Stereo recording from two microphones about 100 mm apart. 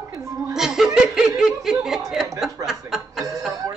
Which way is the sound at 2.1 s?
5° right (ahead or behind).